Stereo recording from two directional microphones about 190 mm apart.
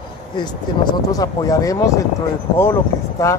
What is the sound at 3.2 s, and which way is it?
Speech, 15° left (ahead or behind).